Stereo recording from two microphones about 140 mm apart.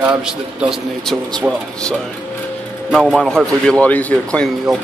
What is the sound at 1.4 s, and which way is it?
Speech, 15° right (ahead or behind).